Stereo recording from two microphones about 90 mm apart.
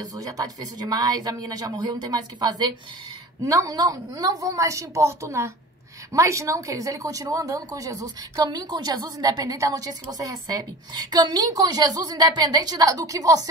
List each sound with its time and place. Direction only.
0.0 s speech: 40° right (ahead or behind)
3.4 s a woman's voice: 35° right (ahead or behind)